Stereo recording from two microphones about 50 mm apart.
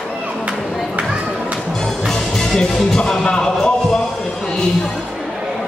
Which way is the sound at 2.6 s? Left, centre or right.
Centre.